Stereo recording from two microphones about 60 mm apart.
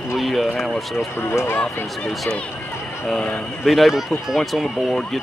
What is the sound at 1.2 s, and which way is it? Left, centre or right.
Speech, left.